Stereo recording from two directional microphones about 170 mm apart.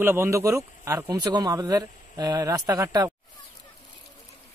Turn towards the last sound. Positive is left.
turn(degrees=-20)  # may be behind; listen again after turning